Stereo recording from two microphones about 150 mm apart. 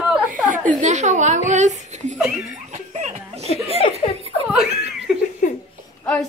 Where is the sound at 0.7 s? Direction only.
50° right (ahead or behind).